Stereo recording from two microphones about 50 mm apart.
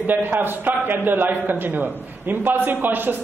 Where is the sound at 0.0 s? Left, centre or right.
Right.